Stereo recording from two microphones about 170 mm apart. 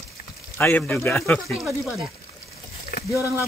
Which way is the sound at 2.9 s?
65° left (ahead or behind).